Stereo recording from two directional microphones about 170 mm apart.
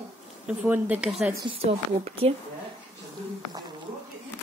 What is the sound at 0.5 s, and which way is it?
Speech, 10° right (ahead or behind).